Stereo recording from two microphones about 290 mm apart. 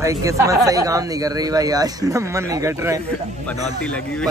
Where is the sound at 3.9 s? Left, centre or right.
Centre.